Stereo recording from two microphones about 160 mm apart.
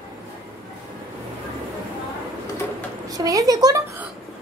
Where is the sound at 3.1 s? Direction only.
20° right (ahead or behind).